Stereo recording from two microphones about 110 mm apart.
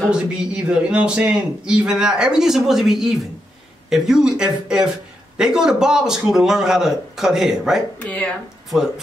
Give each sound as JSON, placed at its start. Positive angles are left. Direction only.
{"t": 0.0, "sound": "speech", "side_deg": -10}
{"t": 8.0, "sound": "speech", "side_deg": 10}
{"t": 8.6, "sound": "speech", "side_deg": -5}